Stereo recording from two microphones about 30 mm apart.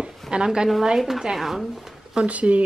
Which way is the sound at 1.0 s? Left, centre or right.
Centre.